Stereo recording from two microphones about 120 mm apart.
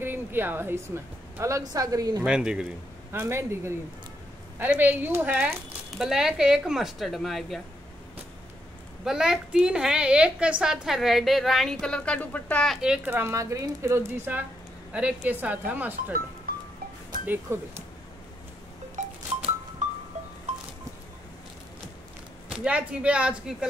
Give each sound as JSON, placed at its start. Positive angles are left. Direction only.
{"t": 0.0, "sound": "a woman's voice", "side_deg": -20}
{"t": 2.2, "sound": "speech", "side_deg": -5}
{"t": 3.1, "sound": "a woman's voice", "side_deg": -20}
{"t": 9.0, "sound": "a woman's voice", "side_deg": -5}
{"t": 12.7, "sound": "speech", "side_deg": -5}
{"t": 17.3, "sound": "speech", "side_deg": -20}
{"t": 19.0, "sound": "a sound", "side_deg": -90}
{"t": 19.8, "sound": "music", "side_deg": -90}
{"t": 22.5, "sound": "speech", "side_deg": -10}